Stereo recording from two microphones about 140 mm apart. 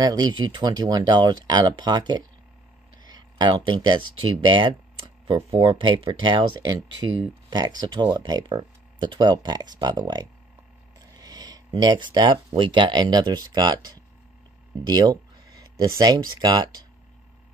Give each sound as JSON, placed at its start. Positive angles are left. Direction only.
{"t": 0.0, "sound": "speech", "side_deg": -30}
{"t": 3.1, "sound": "a sound", "side_deg": -30}
{"t": 4.5, "sound": "speech", "side_deg": -35}